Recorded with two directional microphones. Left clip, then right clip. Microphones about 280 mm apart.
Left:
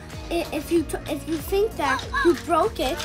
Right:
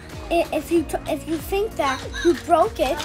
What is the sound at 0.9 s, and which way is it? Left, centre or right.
A woman's voice, centre.